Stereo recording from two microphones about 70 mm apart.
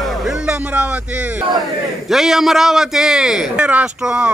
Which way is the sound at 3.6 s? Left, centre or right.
Centre.